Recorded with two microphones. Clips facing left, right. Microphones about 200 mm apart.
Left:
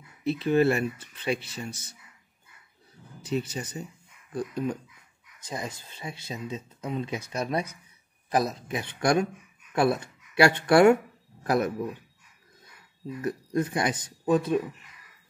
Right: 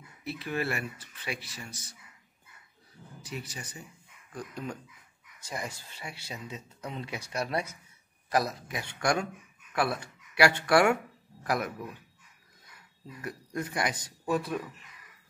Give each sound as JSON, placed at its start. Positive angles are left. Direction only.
{"t": 0.2, "sound": "speech", "side_deg": 25}
{"t": 3.3, "sound": "speech", "side_deg": 25}
{"t": 5.5, "sound": "speech", "side_deg": 20}
{"t": 13.2, "sound": "speech", "side_deg": 25}